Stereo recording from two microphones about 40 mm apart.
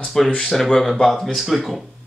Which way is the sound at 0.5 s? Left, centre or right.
Centre.